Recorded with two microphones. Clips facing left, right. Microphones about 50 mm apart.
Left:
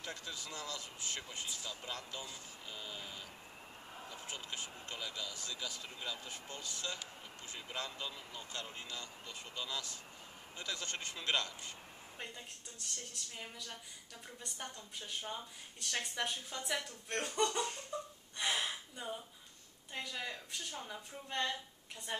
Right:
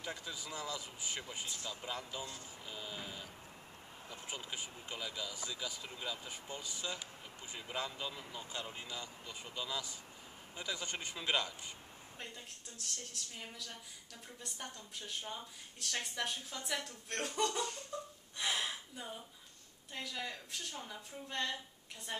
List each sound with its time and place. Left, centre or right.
0.0 s speech: centre
12.2 s speech: centre
17.9 s gasp: centre
18.4 s a sound: centre
19.9 s a woman's voice: centre